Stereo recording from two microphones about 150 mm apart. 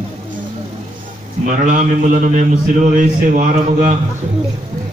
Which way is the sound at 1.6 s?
55° right (ahead or behind).